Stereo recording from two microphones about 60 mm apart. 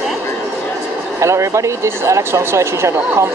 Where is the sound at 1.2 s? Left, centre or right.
Right.